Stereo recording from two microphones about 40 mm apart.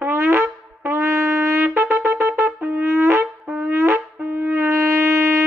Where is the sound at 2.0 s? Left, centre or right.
Right.